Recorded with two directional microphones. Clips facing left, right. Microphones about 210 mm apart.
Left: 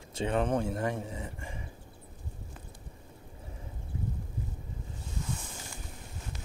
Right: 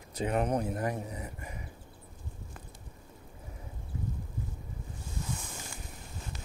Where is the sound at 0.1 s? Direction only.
30° left (ahead or behind).